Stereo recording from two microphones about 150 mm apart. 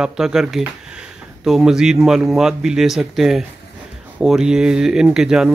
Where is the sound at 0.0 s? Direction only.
5° right (ahead or behind).